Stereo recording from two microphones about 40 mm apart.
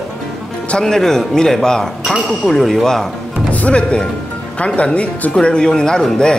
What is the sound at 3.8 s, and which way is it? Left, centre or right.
A man's voice, left.